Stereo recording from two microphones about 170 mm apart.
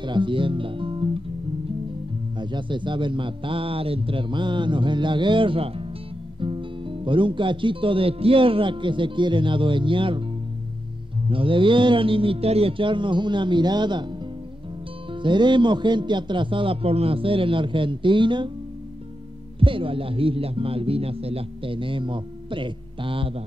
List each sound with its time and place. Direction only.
0.0 s speech: 30° right (ahead or behind)
2.3 s speech: 25° right (ahead or behind)
11.2 s speech: 30° right (ahead or behind)
19.6 s speech: 30° right (ahead or behind)